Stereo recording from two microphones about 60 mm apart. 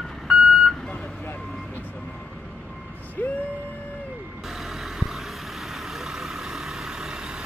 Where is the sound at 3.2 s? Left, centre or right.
Left.